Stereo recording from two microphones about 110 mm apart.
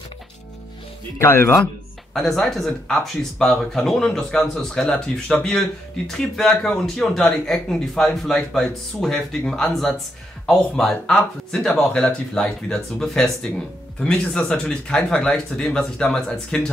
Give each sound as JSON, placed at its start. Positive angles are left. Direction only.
{"t": 1.1, "sound": "speech", "side_deg": 25}
{"t": 2.1, "sound": "speech", "side_deg": 5}